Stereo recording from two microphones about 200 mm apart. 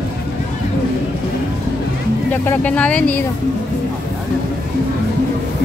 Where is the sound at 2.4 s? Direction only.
5° left (ahead or behind).